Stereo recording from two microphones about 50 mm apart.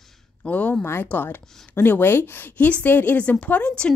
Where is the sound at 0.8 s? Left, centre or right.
Left.